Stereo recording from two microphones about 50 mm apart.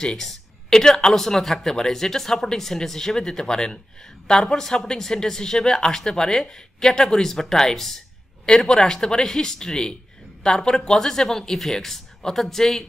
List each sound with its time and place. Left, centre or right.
0.0 s a man's voice: centre